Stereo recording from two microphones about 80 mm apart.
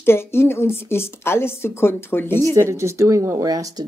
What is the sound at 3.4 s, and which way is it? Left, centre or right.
Speech, right.